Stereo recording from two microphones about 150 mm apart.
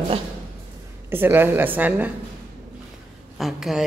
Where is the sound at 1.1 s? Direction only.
15° right (ahead or behind).